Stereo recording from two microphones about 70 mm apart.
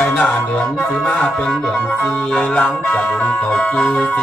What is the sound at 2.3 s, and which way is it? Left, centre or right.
Music, centre.